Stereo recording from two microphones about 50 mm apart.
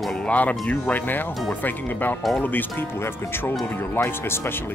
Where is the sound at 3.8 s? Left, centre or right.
Left.